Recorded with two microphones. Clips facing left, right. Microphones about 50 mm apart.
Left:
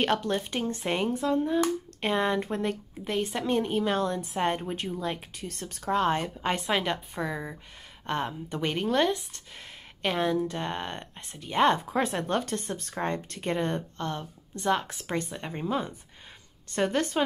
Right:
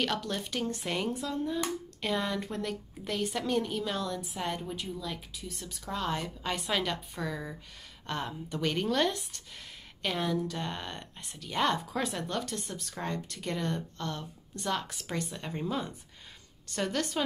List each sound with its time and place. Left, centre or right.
0.0 s a woman's voice: left